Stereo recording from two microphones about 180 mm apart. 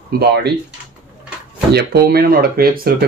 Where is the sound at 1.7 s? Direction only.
60° right (ahead or behind).